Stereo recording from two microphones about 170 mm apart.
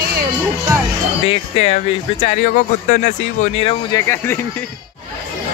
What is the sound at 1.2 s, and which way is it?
Speech, 35° left (ahead or behind).